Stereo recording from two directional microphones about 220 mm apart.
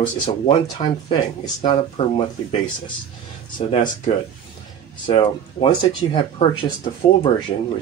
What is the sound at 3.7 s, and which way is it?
Speech, 25° left (ahead or behind).